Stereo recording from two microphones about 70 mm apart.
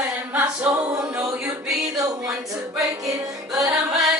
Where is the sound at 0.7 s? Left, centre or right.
Right.